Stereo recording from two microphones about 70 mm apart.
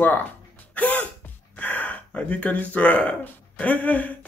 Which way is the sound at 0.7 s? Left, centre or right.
Left.